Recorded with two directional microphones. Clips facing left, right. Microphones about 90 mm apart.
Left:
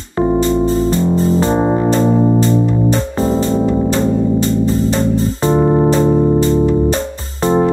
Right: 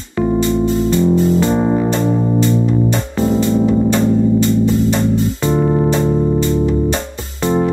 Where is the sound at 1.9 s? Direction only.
35° left (ahead or behind).